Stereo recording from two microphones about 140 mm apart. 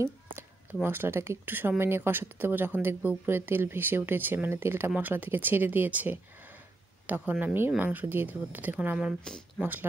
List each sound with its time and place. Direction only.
0.8 s speech: 15° right (ahead or behind)
7.2 s speech: 15° right (ahead or behind)